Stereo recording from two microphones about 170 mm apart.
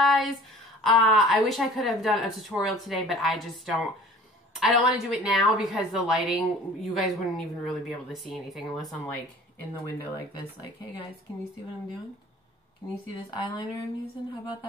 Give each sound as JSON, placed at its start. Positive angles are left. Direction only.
{"t": 0.0, "sound": "a sound", "side_deg": 0}
{"t": 0.8, "sound": "a woman's voice", "side_deg": 0}
{"t": 13.3, "sound": "speech", "side_deg": 25}